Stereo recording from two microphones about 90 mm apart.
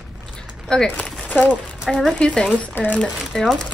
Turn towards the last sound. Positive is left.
turn(degrees=5)  # may be behind; listen again after turning